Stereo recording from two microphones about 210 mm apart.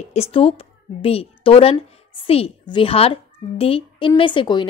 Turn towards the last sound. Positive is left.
turn(degrees=20)  # may be behind; listen again after turning